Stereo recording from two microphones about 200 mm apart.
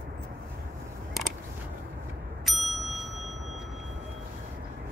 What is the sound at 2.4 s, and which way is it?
Bicycle bell, centre (ahead or behind).